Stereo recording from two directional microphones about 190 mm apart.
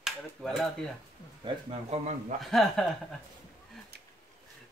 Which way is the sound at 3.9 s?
55° right (ahead or behind).